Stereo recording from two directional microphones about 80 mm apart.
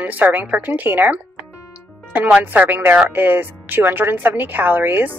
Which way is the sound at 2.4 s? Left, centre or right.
Right.